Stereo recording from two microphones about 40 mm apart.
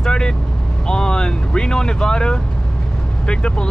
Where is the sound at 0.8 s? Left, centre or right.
Centre.